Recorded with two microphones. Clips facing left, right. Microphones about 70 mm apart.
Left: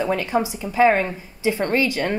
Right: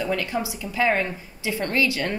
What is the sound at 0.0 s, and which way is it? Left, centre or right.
A woman's voice, left.